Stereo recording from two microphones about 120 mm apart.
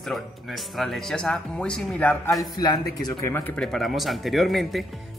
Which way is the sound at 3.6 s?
Centre (ahead or behind).